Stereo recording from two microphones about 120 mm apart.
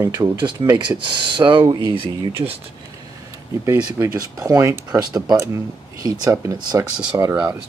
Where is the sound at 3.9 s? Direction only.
25° right (ahead or behind).